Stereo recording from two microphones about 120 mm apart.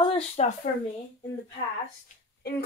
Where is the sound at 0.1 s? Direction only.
60° left (ahead or behind).